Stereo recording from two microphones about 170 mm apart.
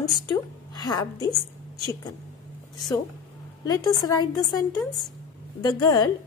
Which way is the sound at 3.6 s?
20° left (ahead or behind).